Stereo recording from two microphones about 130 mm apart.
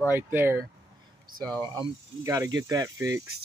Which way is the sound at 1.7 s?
25° right (ahead or behind).